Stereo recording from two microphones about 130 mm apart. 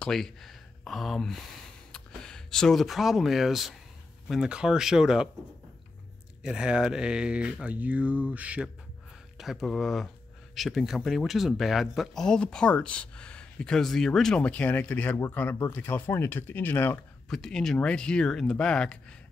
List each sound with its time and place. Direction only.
0.0 s speech: centre (ahead or behind)
6.4 s speech: 5° right (ahead or behind)
9.4 s speech: centre (ahead or behind)
17.3 s speech: 5° left (ahead or behind)